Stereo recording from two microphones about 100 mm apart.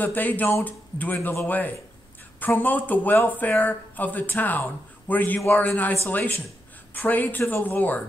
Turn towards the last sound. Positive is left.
turn(degrees=20)  # may be behind; listen again after turning